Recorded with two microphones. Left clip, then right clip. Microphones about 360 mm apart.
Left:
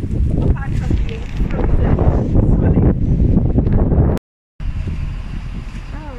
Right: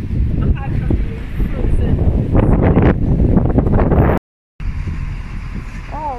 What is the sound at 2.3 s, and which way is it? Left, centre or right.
Wind noise, right.